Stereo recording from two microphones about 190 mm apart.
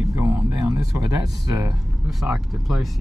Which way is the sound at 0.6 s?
20° right (ahead or behind).